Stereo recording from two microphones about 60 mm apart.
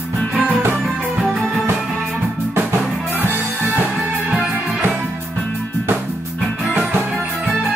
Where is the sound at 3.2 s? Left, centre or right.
Right.